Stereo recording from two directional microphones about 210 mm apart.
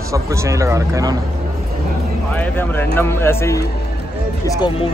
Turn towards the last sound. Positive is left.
turn(degrees=20)  # may be behind; listen again after turning